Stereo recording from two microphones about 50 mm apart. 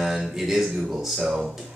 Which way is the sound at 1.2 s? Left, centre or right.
Right.